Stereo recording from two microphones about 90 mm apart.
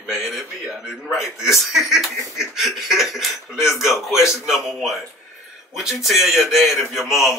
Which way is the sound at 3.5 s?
30° left (ahead or behind).